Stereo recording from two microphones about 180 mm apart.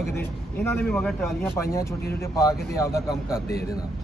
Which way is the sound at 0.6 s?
10° left (ahead or behind).